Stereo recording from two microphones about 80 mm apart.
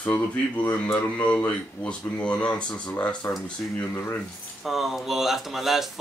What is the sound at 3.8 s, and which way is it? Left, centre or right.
Speech, left.